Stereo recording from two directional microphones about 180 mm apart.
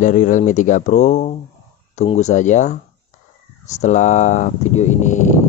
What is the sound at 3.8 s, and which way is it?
Speech, 40° left (ahead or behind).